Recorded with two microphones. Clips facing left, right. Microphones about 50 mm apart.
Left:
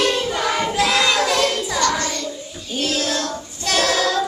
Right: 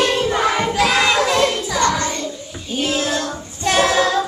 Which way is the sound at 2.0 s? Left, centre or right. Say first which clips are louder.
Right 2 dB; right.